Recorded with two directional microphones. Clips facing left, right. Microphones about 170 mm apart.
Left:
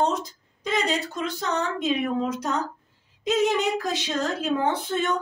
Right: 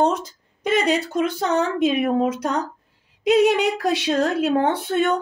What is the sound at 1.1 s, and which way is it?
A woman's voice, 60° right (ahead or behind).